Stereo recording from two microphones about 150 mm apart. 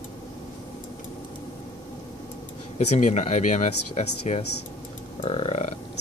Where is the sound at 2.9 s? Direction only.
50° left (ahead or behind).